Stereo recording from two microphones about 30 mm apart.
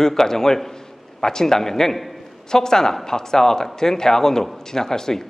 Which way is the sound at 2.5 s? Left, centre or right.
Centre.